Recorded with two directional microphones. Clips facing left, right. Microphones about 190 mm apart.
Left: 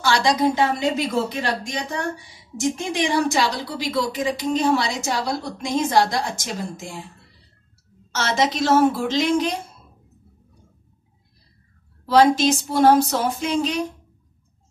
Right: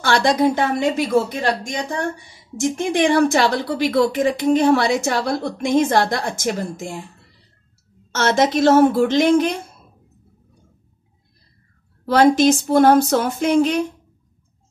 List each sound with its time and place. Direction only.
0.0 s a woman's voice: 55° right (ahead or behind)
8.1 s speech: 50° right (ahead or behind)
12.1 s a woman's voice: 55° right (ahead or behind)